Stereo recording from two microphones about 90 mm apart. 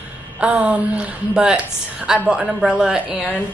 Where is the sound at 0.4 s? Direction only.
15° right (ahead or behind).